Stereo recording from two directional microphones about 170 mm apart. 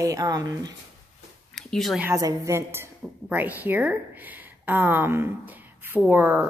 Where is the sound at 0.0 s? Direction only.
20° right (ahead or behind).